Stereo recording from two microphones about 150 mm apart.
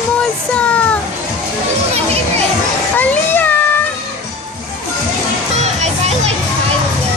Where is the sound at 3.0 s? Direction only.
10° left (ahead or behind).